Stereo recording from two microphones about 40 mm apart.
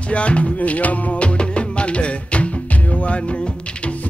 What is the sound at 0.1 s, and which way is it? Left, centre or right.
Music, left.